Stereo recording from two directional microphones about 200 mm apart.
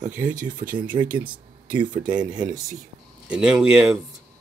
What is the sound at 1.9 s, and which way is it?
Speech, 40° right (ahead or behind).